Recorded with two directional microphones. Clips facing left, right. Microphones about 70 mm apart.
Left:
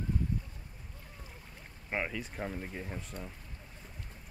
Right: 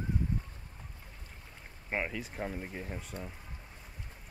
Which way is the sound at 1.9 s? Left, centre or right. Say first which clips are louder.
Even; centre.